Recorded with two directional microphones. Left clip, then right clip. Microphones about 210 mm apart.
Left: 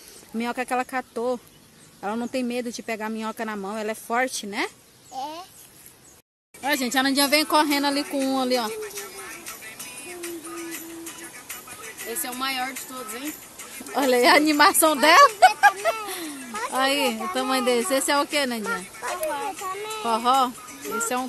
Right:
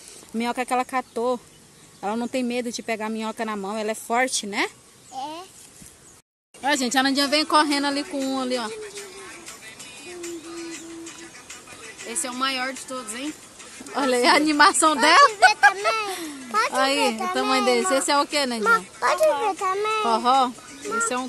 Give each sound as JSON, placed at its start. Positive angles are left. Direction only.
{"t": 0.4, "sound": "speech", "side_deg": -5}
{"t": 6.6, "sound": "speech", "side_deg": -5}
{"t": 7.9, "sound": "music", "side_deg": 20}
{"t": 12.1, "sound": "a woman's voice", "side_deg": -20}
{"t": 13.9, "sound": "speech", "side_deg": 10}
{"t": 16.1, "sound": "children playing", "side_deg": 0}
{"t": 16.7, "sound": "speech", "side_deg": 0}
{"t": 19.0, "sound": "speech", "side_deg": -45}
{"t": 20.1, "sound": "speech", "side_deg": -5}